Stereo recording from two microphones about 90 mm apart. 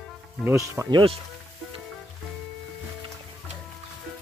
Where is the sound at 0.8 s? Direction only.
15° right (ahead or behind).